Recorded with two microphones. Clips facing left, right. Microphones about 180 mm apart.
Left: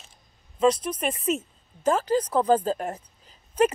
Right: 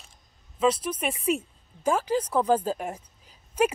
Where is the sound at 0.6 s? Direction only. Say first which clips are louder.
Left 2 dB; 5° right (ahead or behind).